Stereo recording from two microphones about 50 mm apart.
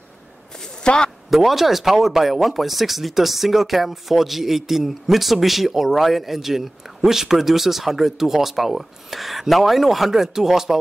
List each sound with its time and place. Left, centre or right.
0.8 s a man's voice: centre
1.3 s speech: centre